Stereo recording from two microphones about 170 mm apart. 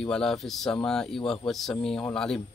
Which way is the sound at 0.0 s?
5° left (ahead or behind).